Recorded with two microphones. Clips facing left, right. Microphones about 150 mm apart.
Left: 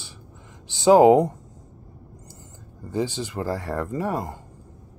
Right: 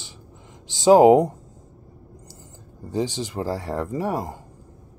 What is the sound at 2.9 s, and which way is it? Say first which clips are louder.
Speech: right 1 dB; 15° right (ahead or behind).